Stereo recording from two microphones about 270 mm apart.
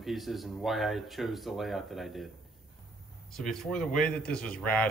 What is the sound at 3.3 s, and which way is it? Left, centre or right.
Speech, centre.